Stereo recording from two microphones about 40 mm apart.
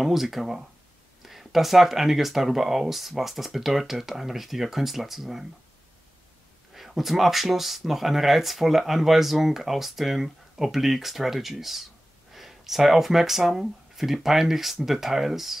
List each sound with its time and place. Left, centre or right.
0.0 s speech: centre
6.7 s speech: centre